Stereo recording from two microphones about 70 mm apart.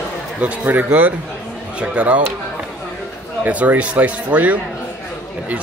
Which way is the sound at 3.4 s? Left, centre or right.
Right.